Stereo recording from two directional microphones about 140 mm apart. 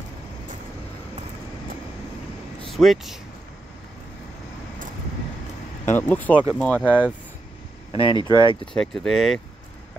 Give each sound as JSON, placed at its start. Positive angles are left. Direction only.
{"t": 2.7, "sound": "speech", "side_deg": 0}
{"t": 5.9, "sound": "speech", "side_deg": 15}
{"t": 7.9, "sound": "speech", "side_deg": 40}
{"t": 8.2, "sound": "speech", "side_deg": -25}
{"t": 8.7, "sound": "speech", "side_deg": 0}